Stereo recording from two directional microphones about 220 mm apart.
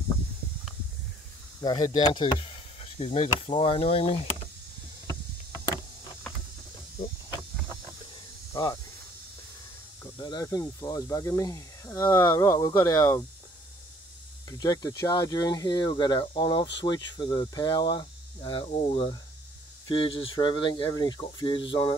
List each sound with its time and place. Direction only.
1.6 s speech: 20° left (ahead or behind)
10.1 s speech: 20° left (ahead or behind)
14.6 s speech: 15° left (ahead or behind)